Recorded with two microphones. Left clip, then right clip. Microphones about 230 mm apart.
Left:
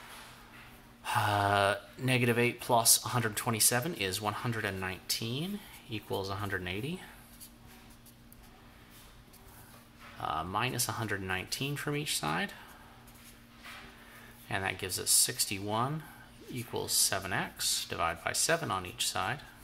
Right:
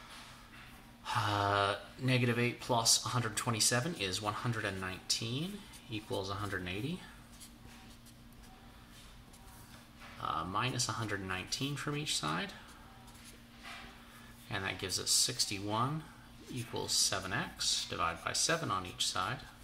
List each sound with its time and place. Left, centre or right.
1.0 s speech: left
10.2 s speech: left
14.5 s speech: left